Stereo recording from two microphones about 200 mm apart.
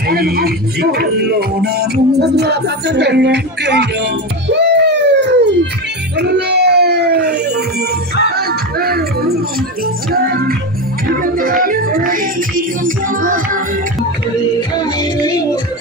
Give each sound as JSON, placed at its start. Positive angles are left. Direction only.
{"t": 0.1, "sound": "speech", "side_deg": -50}
{"t": 6.1, "sound": "a sound", "side_deg": -55}
{"t": 8.3, "sound": "music", "side_deg": -50}
{"t": 14.8, "sound": "music", "side_deg": 20}